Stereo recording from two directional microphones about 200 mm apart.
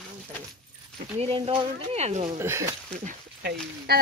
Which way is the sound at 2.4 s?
15° right (ahead or behind).